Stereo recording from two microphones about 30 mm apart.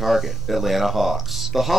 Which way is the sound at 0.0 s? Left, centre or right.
Centre.